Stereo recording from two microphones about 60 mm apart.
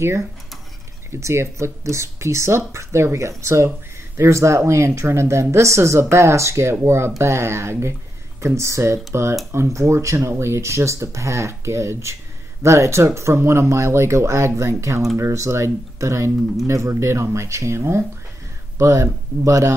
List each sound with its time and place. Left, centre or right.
1.1 s speech: right